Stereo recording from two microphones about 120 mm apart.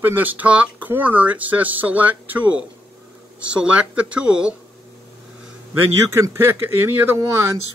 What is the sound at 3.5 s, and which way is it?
Speech, 10° right (ahead or behind).